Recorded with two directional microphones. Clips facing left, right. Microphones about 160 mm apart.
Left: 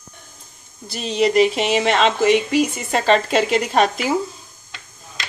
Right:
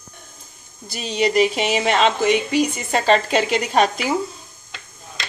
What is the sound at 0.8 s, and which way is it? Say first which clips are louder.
Speech: left 2 dB; centre (ahead or behind).